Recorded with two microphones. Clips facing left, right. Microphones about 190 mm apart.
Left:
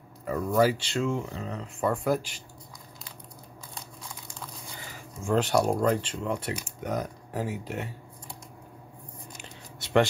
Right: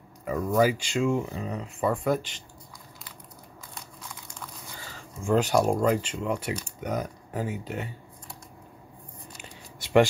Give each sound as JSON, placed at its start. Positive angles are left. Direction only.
{"t": 0.2, "sound": "speech", "side_deg": -5}
{"t": 0.9, "sound": "speech", "side_deg": -15}
{"t": 4.7, "sound": "a sound", "side_deg": 15}
{"t": 5.2, "sound": "speech", "side_deg": 0}